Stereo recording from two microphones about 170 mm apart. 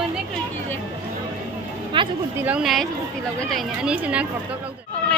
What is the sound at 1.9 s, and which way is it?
Speech, 30° right (ahead or behind).